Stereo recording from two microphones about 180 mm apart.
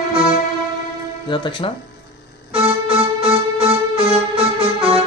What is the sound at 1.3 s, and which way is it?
Speech, 25° left (ahead or behind).